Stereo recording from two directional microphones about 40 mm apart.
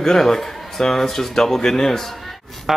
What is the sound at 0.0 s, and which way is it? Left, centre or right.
Speech, centre.